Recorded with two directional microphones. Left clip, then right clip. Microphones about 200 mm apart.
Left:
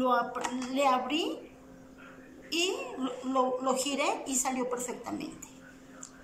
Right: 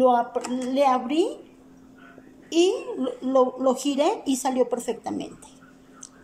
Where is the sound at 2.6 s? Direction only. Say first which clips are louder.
Right 10 dB; 55° right (ahead or behind).